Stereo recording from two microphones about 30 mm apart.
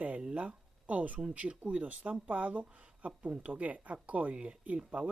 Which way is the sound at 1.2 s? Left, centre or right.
Right.